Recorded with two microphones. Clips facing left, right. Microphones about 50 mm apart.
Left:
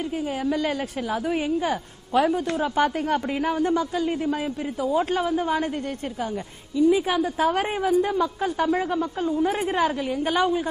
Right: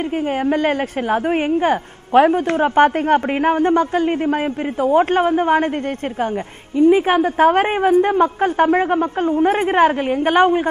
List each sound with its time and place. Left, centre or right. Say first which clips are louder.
0.5 s a woman's voice: right 7 dB; right
6.8 s a woman's voice: right 7 dB; right